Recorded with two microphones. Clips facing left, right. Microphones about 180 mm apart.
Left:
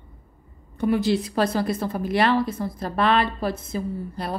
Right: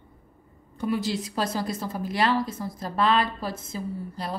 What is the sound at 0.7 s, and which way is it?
A woman's voice, 60° left (ahead or behind).